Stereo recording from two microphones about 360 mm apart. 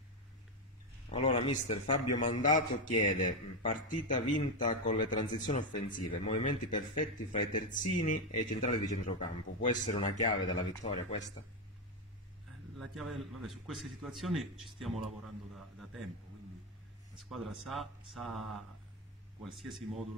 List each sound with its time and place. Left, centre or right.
1.1 s a man's voice: centre
12.7 s a man's voice: centre
17.3 s speech: centre